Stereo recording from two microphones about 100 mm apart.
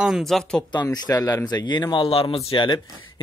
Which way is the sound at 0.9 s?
40° left (ahead or behind).